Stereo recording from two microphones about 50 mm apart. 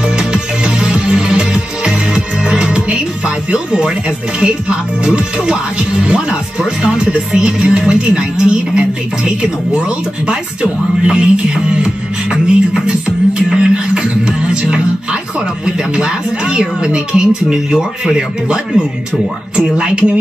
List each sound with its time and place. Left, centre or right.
0.0 s music: centre
4.4 s speech: right